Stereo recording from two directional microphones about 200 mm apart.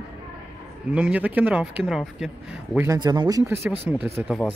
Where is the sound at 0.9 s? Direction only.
10° right (ahead or behind).